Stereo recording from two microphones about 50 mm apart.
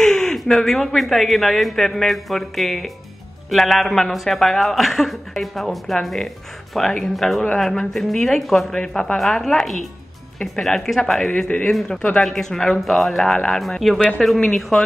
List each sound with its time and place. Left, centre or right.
0.0 s a sound: centre
0.4 s a man's voice: centre
11.4 s speech: left
12.2 s a man's voice: centre
13.3 s a man's voice: centre
14.4 s speech: centre